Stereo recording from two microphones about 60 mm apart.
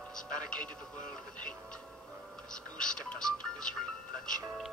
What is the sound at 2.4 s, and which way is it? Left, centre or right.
Speech, centre.